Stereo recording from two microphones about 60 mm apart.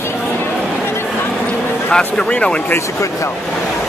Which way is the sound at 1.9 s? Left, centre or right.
Centre.